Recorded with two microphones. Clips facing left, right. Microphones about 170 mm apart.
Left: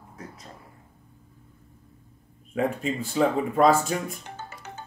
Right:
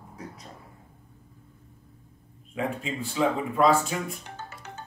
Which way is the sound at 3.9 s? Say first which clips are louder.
Left 3 dB; centre (ahead or behind).